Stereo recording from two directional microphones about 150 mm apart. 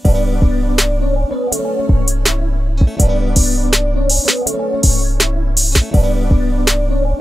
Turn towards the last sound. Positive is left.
turn(degrees=0)  # may be behind; listen again after turning